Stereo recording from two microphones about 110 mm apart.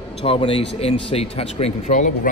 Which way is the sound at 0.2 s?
55° left (ahead or behind).